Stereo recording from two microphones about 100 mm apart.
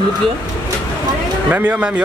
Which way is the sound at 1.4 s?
15° right (ahead or behind).